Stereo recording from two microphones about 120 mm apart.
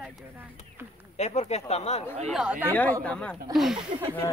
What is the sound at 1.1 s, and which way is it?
Speech, 65° left (ahead or behind).